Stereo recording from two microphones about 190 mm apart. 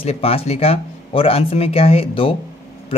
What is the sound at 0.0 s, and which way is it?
Speech, 30° left (ahead or behind).